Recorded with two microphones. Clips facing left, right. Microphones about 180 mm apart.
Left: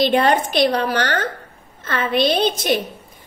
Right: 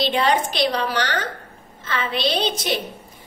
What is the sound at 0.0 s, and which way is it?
A woman's voice, 50° left (ahead or behind).